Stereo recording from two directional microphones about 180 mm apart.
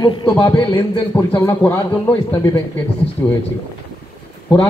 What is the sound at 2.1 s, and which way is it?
A man's voice, 25° left (ahead or behind).